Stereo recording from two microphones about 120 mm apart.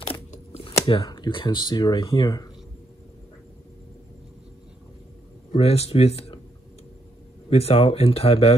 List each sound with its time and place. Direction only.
0.0 s a sound: 55° left (ahead or behind)
1.0 s speech: 35° left (ahead or behind)
5.5 s speech: 55° left (ahead or behind)
7.4 s speech: 55° left (ahead or behind)